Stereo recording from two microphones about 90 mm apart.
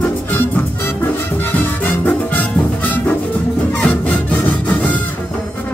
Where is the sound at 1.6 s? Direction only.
20° left (ahead or behind).